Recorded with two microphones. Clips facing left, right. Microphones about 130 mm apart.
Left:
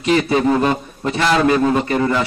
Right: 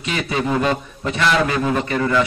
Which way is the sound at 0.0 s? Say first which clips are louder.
Left 7 dB; 40° left (ahead or behind).